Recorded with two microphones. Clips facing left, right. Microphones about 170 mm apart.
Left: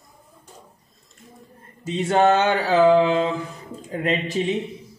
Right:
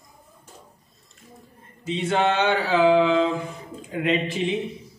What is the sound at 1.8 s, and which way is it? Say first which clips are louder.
Speech: left 4 dB; 45° left (ahead or behind).